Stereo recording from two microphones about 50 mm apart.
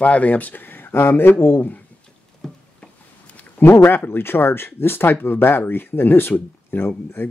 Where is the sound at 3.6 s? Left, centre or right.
Left.